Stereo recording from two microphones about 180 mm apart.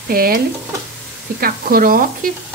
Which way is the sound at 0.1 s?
55° right (ahead or behind).